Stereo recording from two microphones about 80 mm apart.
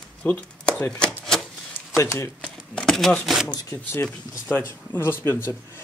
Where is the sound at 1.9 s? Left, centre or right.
Left.